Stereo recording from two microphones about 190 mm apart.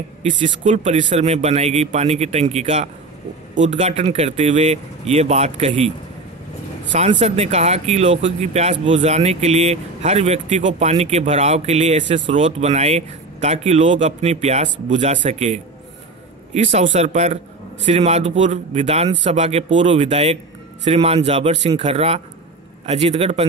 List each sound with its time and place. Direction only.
0.3 s speech: 40° right (ahead or behind)
6.9 s speech: 40° right (ahead or behind)